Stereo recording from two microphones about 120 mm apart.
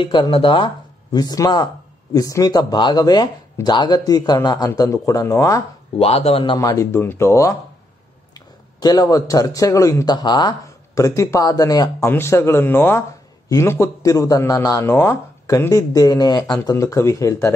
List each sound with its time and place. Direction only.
0.0 s speech: 45° left (ahead or behind)
1.1 s speech: 30° left (ahead or behind)
5.9 s speech: 55° left (ahead or behind)
6.6 s speech: 25° left (ahead or behind)
8.7 s speech: 35° left (ahead or behind)
10.1 s speech: 40° left (ahead or behind)
11.0 s speech: 25° left (ahead or behind)
12.1 s speech: 20° left (ahead or behind)